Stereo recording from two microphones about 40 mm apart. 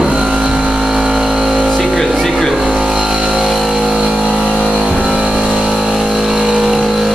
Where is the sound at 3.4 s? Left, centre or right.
Centre.